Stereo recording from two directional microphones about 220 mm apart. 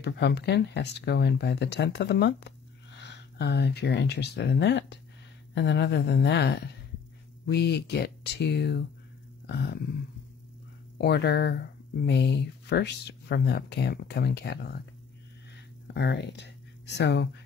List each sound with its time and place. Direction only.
0.0 s speech: 50° left (ahead or behind)
11.0 s speech: 50° left (ahead or behind)
15.9 s speech: 50° left (ahead or behind)